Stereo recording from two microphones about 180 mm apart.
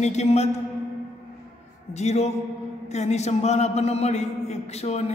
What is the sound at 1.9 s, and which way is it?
A man's voice, 40° left (ahead or behind).